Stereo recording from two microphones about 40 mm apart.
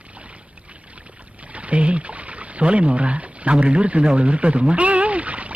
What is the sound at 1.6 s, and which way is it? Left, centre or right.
Pour, right.